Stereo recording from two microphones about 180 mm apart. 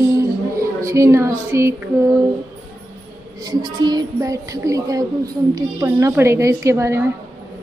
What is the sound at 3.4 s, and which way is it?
A woman's voice, 20° right (ahead or behind).